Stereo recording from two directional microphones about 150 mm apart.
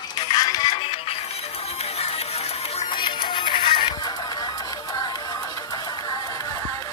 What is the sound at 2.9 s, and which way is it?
Music, 30° left (ahead or behind).